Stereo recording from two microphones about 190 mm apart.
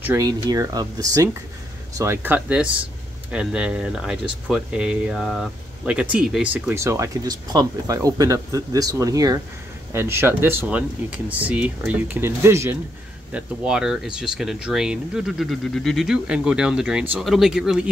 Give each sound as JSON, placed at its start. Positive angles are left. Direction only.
{"t": 0.0, "sound": "speech", "side_deg": -15}